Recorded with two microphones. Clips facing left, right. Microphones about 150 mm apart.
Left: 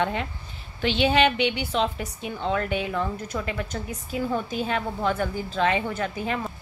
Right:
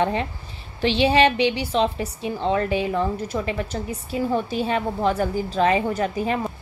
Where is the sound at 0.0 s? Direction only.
35° right (ahead or behind).